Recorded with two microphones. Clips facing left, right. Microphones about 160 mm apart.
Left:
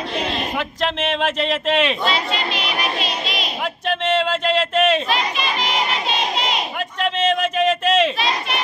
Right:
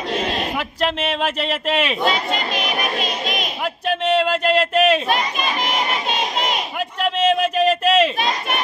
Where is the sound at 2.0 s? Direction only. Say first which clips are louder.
Right 1 dB; 45° right (ahead or behind).